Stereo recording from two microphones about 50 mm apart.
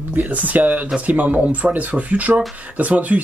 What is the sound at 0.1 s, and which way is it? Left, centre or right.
Speech, right.